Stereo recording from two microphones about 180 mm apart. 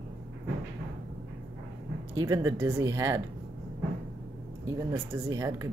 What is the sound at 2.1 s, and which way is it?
Speech, 20° right (ahead or behind).